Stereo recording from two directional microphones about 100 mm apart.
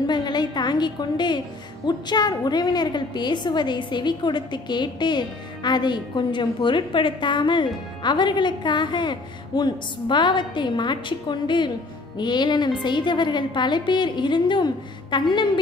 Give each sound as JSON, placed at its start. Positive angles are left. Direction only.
{"t": 0.0, "sound": "a woman's voice", "side_deg": 45}